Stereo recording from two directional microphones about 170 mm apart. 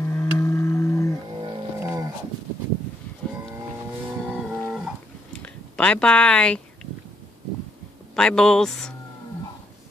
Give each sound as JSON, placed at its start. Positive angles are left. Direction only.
{"t": 0.0, "sound": "cattle", "side_deg": 15}
{"t": 1.8, "sound": "livestock", "side_deg": -15}
{"t": 4.3, "sound": "a sound", "side_deg": -5}
{"t": 5.4, "sound": "speech", "side_deg": 5}
{"t": 8.2, "sound": "speech", "side_deg": 5}